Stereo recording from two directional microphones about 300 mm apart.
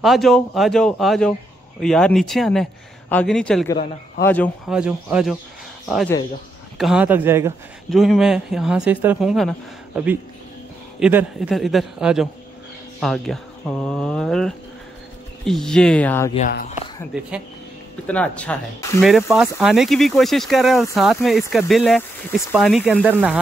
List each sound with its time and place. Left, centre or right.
0.0 s speech: centre
16.3 s speech: left
17.1 s speech: centre